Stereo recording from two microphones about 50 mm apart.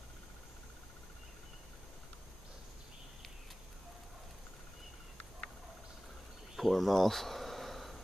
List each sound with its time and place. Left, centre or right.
6.5 s insect: centre